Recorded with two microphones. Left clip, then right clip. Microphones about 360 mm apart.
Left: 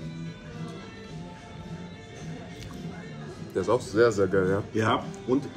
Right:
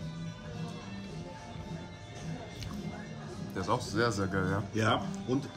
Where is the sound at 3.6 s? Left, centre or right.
Centre.